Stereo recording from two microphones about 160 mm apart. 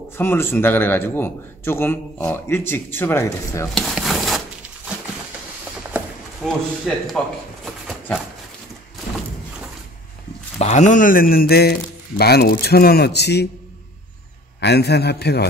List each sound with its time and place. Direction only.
0.2 s a man's voice: 15° left (ahead or behind)
3.7 s a sound: centre (ahead or behind)
5.9 s clip-clop: 10° right (ahead or behind)
6.4 s speech: 5° left (ahead or behind)
10.6 s a man's voice: 45° left (ahead or behind); by 13.5 s 90° left
14.6 s a man's voice: 90° left